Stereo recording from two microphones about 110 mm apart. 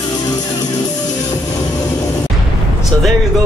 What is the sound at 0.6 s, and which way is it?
Music, 35° left (ahead or behind).